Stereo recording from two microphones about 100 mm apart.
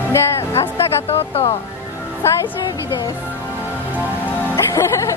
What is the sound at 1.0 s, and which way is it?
Speech, 80° left.